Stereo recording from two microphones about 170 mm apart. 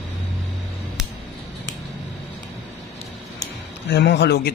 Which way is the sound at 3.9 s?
90° left.